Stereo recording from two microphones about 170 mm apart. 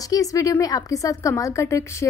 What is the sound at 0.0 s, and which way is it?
A woman's voice, 20° left (ahead or behind).